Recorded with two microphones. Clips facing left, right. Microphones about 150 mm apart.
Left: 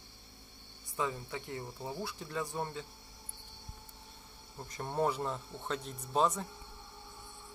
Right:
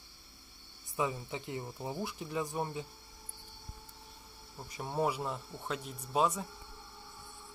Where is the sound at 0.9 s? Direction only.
15° right (ahead or behind).